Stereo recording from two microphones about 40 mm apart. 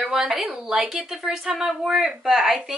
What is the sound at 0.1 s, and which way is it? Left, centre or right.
Speech, centre.